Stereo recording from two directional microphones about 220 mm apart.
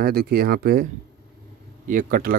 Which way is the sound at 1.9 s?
40° right (ahead or behind).